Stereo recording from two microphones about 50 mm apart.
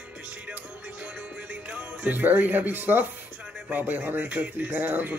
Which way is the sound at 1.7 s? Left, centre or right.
Right.